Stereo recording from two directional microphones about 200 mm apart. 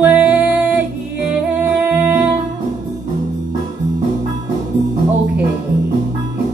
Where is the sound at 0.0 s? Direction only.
5° right (ahead or behind).